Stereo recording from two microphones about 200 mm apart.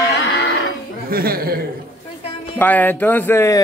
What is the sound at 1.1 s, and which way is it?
Speech, 50° right (ahead or behind).